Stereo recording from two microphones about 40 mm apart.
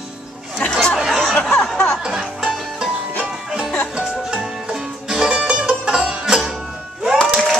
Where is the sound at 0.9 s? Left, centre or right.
Centre.